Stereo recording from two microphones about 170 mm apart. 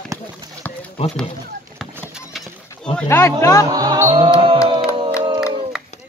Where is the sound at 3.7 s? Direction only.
20° right (ahead or behind).